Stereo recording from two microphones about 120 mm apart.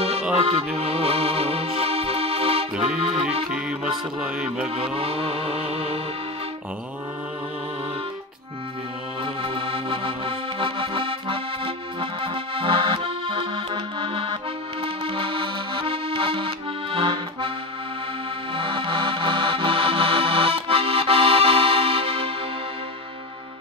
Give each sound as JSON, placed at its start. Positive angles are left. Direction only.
{"t": 0.3, "sound": "music", "side_deg": -55}
{"t": 2.9, "sound": "accordion", "side_deg": -5}
{"t": 4.2, "sound": "music", "side_deg": -10}
{"t": 4.7, "sound": "music", "side_deg": -55}
{"t": 9.2, "sound": "accordion", "side_deg": -50}
{"t": 18.5, "sound": "music", "side_deg": -45}